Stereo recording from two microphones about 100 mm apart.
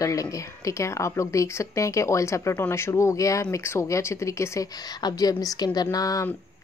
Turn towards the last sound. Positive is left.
turn(degrees=40)  # may be behind; listen again after turning